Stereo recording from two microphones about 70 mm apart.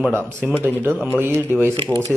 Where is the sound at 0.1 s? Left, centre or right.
Left.